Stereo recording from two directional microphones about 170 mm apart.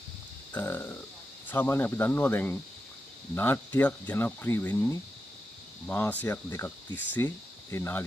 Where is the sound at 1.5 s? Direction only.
10° left (ahead or behind).